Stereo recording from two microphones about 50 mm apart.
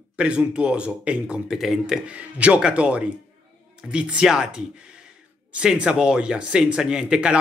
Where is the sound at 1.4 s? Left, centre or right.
Centre.